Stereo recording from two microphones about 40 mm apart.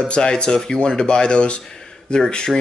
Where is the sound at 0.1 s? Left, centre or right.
Left.